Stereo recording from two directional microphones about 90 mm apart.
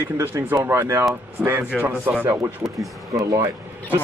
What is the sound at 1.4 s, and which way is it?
Speech, 10° right (ahead or behind).